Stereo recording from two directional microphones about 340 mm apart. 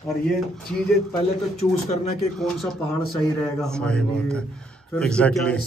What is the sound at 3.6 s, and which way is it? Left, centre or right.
A man's voice, centre.